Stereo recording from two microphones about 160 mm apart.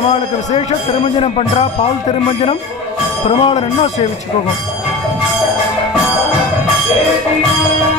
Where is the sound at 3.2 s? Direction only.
40° left (ahead or behind).